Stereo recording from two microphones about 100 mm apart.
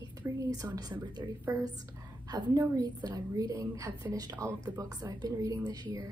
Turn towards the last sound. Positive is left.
turn(degrees=-40)  # may be behind; listen again after turning